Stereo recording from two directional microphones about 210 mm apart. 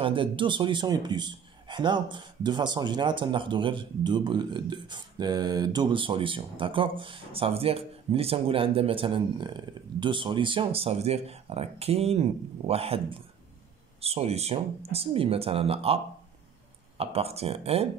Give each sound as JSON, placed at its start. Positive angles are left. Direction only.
{"t": 0.0, "sound": "a man's voice", "side_deg": -25}
{"t": 17.0, "sound": "a man's voice", "side_deg": -30}